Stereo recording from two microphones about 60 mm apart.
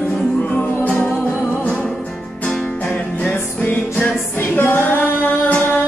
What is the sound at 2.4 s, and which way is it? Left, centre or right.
Music, left.